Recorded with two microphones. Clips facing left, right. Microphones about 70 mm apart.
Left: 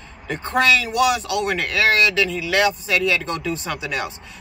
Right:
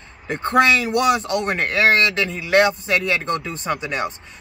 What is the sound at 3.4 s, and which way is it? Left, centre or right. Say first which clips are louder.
Speech: right 1 dB; right.